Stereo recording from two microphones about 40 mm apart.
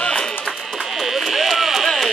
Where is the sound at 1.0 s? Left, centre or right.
Centre.